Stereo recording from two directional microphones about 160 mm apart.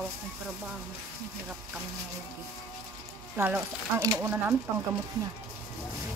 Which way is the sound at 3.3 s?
15° right (ahead or behind).